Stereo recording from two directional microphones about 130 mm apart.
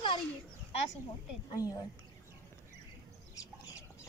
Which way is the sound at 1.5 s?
30° left (ahead or behind).